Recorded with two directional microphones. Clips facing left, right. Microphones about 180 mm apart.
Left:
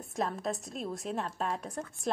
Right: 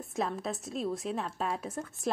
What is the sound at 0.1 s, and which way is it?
A woman's voice, centre (ahead or behind).